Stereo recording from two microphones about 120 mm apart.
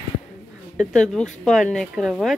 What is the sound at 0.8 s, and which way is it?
Speech, 5° left (ahead or behind).